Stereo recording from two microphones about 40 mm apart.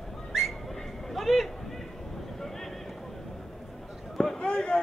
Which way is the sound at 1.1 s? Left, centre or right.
Centre.